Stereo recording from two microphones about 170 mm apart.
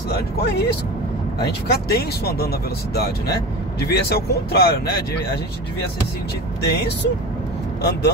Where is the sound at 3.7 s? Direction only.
70° left (ahead or behind).